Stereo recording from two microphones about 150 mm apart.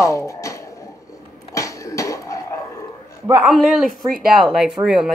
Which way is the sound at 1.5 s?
20° left (ahead or behind).